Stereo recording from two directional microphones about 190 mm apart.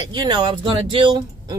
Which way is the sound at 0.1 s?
20° right (ahead or behind).